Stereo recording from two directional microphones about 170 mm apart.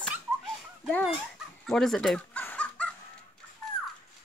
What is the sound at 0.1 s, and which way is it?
Dog, centre (ahead or behind).